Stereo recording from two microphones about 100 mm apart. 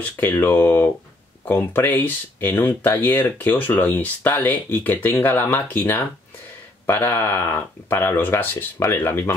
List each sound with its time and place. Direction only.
0.2 s speech: 20° left (ahead or behind)